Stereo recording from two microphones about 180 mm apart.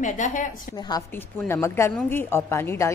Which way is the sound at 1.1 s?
10° left (ahead or behind).